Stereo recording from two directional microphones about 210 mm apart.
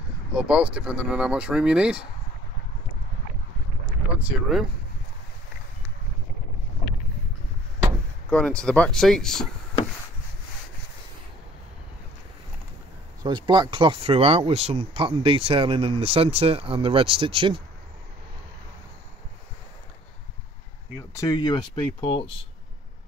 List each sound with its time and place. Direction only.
0.3 s speech: 5° right (ahead or behind)
4.1 s speech: 5° right (ahead or behind)
8.3 s speech: 5° left (ahead or behind)
13.2 s speech: 20° right (ahead or behind)
20.9 s speech: 15° left (ahead or behind)